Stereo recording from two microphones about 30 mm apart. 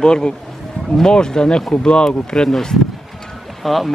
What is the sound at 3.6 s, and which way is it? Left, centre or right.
Speech, centre.